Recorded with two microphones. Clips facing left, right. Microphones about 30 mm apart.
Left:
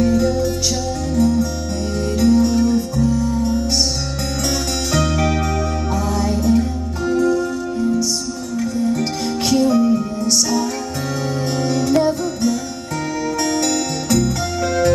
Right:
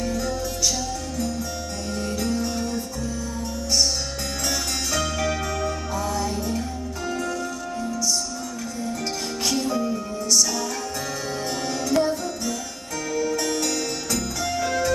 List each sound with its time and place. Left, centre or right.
0.0 s music: left
4.9 s music: left
5.9 s music: left
8.5 s music: left
9.8 s music: left
11.6 s music: left